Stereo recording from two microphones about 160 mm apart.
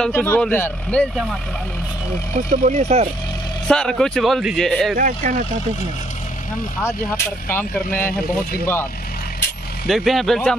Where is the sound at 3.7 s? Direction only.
5° left (ahead or behind).